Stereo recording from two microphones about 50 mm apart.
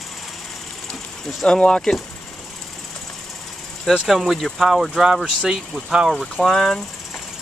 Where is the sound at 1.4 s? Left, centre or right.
Centre.